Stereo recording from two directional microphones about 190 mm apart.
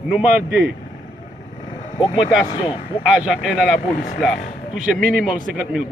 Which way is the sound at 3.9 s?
50° left (ahead or behind).